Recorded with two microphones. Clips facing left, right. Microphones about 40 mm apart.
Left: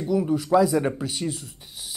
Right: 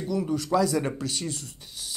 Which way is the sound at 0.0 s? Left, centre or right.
Centre.